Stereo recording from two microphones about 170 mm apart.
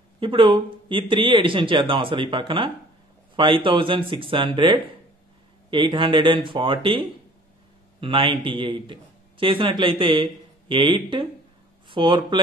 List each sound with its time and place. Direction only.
0.2 s a man's voice: 30° right (ahead or behind)